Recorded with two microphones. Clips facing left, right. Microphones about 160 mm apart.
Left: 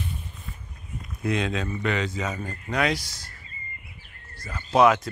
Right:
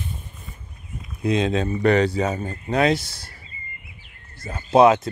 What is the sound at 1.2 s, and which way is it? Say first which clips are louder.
Speech: right 5 dB; 20° right (ahead or behind).